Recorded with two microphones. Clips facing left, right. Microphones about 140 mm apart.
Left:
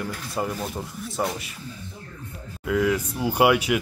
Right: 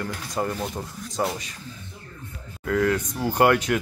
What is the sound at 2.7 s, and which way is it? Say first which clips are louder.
Speech: even; 5° left (ahead or behind).